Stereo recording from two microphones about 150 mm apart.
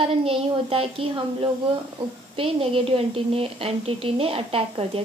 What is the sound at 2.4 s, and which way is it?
A woman's voice, 35° right (ahead or behind).